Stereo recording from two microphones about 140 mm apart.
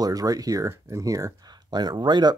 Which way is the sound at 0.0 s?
25° right (ahead or behind).